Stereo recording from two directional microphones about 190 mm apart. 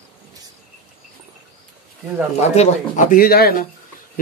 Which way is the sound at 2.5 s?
40° left (ahead or behind).